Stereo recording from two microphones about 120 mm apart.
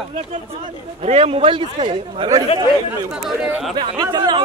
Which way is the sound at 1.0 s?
55° right (ahead or behind).